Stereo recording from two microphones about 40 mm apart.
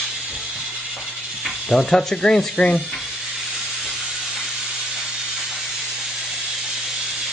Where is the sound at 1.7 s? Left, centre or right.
Centre.